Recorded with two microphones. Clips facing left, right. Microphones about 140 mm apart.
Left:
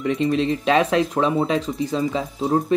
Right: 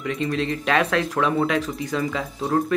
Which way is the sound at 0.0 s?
25° left (ahead or behind).